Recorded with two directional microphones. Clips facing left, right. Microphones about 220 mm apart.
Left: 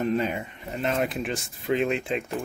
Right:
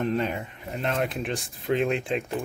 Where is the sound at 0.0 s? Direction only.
Centre (ahead or behind).